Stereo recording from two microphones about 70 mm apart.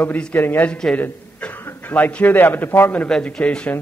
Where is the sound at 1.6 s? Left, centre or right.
Left.